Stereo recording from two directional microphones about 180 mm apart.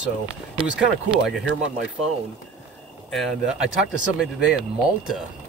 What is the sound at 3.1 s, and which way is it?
Speech, centre (ahead or behind).